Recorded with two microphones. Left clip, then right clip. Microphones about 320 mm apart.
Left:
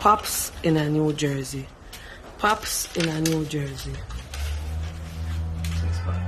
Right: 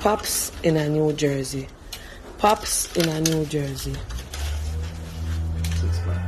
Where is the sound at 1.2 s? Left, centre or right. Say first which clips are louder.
Right 4 dB; left.